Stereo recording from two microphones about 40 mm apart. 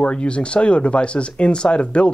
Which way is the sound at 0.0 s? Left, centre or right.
Left.